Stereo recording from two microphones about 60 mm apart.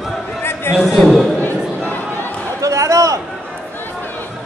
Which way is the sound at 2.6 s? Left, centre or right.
Right.